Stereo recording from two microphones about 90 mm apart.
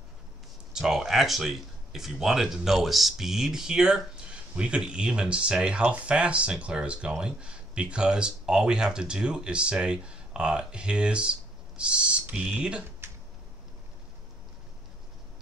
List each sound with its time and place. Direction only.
0.7 s speech: 5° right (ahead or behind)
13.0 s finger snapping: 25° right (ahead or behind)